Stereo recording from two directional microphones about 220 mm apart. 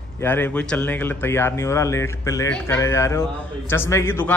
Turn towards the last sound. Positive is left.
turn(degrees=10)  # may be behind; listen again after turning